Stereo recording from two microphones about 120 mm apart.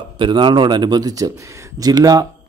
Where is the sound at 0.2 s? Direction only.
40° right (ahead or behind).